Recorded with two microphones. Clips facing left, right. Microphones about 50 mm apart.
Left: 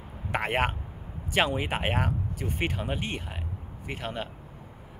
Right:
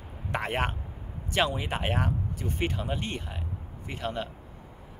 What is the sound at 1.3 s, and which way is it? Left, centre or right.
Speech, centre.